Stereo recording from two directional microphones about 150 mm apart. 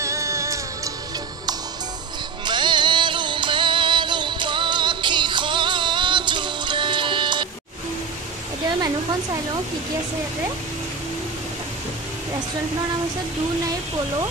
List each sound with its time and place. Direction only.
0.0 s music: 20° right (ahead or behind)
2.4 s music: 30° right (ahead or behind)